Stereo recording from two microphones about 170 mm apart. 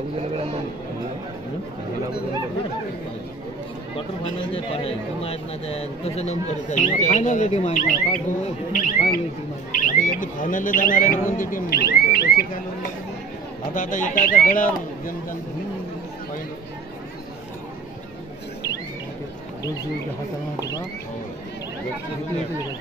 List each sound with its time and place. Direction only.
4.6 s speech: 35° left (ahead or behind); by 12.3 s 70° left (ahead or behind)
13.7 s speech: 50° left (ahead or behind)